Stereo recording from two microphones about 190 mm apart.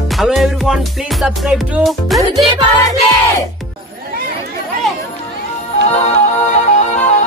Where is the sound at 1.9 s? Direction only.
Centre (ahead or behind).